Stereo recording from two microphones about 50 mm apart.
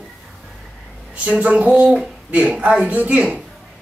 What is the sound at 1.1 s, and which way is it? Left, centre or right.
Speech, right.